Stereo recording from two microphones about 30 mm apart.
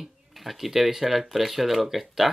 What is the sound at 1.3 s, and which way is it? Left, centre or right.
Speech, centre.